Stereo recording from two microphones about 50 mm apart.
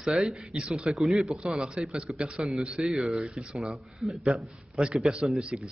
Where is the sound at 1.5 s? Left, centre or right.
Centre.